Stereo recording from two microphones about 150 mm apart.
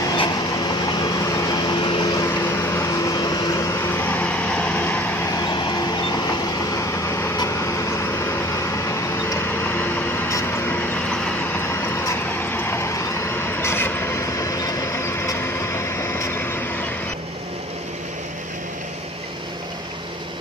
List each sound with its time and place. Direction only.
0.2 s vehicle: 25° left (ahead or behind)
2.2 s vehicle: 15° left (ahead or behind)
5.4 s vehicle: 30° left (ahead or behind)